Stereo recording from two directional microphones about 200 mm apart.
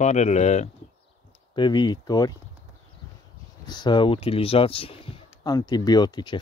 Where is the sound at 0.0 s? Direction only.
35° left (ahead or behind).